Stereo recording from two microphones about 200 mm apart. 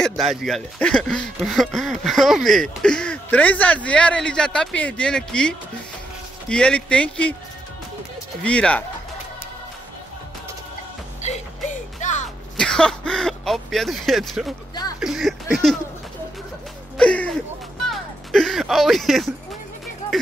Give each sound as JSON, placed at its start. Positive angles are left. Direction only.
{"t": 0.0, "sound": "speech", "side_deg": 0}
{"t": 6.5, "sound": "speech", "side_deg": 5}
{"t": 8.5, "sound": "speech", "side_deg": 5}
{"t": 11.2, "sound": "music", "side_deg": 35}
{"t": 12.5, "sound": "speech", "side_deg": 5}
{"t": 15.0, "sound": "a sound", "side_deg": 0}
{"t": 16.9, "sound": "a sound", "side_deg": 5}
{"t": 17.8, "sound": "music", "side_deg": 0}